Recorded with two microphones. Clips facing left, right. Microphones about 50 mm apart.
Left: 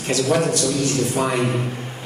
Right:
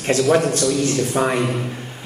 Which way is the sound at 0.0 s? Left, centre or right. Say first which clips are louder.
Right 3 dB; right.